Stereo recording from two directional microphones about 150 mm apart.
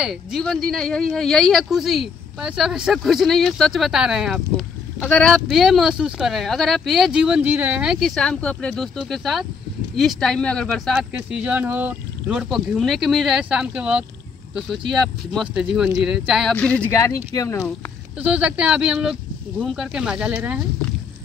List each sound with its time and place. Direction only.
0.0 s speech: centre (ahead or behind)
16.5 s speech: 10° left (ahead or behind)
17.0 s speech: 20° left (ahead or behind)
18.2 s speech: 10° right (ahead or behind)